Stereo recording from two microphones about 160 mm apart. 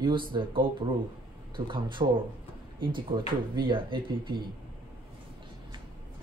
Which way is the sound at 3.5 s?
30° right (ahead or behind).